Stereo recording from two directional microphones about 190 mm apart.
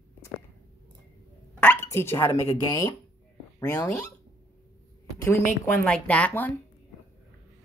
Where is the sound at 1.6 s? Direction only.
10° left (ahead or behind).